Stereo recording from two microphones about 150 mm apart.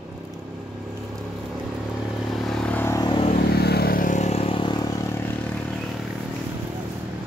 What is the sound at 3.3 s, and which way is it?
Vehicle, 90° left.